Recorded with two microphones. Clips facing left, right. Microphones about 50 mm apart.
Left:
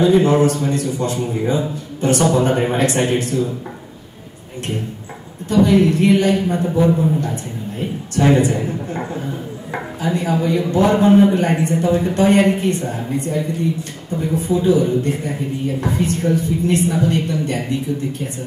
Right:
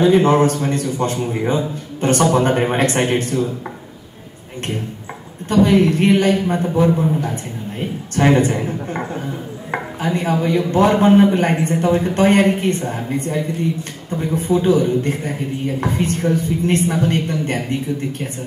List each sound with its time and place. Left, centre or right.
0.0 s a man's voice: right
5.5 s speech: right
8.2 s speech: right
9.7 s chopping: right
10.7 s speech: right